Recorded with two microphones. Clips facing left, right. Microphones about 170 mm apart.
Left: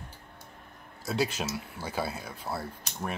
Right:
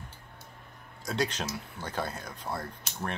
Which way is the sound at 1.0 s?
5° left (ahead or behind).